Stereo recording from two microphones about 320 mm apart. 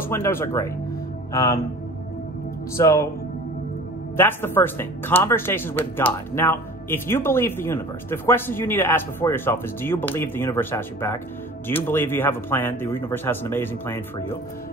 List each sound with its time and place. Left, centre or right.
0.1 s speech: centre
2.8 s speech: centre
4.2 s speech: centre